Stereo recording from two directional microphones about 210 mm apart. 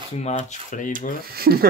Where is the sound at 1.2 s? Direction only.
45° right (ahead or behind).